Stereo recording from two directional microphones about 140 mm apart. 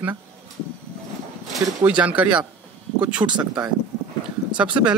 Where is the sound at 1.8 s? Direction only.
10° right (ahead or behind).